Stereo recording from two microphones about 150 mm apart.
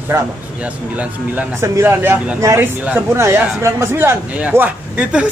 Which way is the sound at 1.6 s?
20° right (ahead or behind).